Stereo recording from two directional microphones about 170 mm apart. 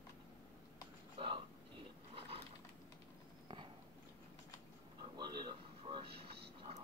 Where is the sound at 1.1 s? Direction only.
30° right (ahead or behind).